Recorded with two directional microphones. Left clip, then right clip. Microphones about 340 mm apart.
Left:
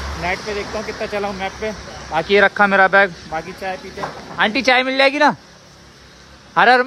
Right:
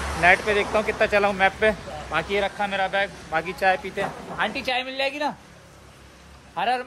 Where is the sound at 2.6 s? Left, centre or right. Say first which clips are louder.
Left 12 dB; left.